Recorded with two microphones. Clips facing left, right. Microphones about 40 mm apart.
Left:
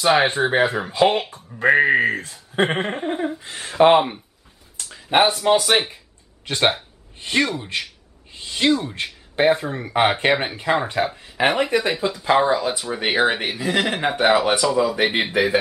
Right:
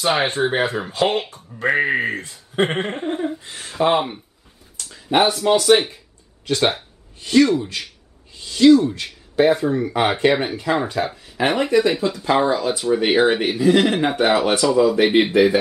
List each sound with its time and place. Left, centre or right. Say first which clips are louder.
0.0 s speech: left 2 dB; centre
3.6 s speech: left 4 dB; left
4.7 s speech: even; centre
12.1 s speech: even; centre